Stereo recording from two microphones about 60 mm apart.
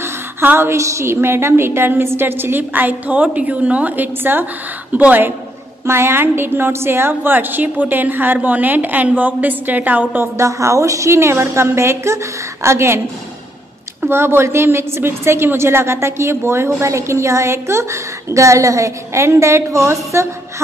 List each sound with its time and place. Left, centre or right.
0.0 s a sound: right
0.7 s a woman's voice: right
5.9 s a woman's voice: right
10.3 s a woman's voice: right
14.0 s a woman's voice: right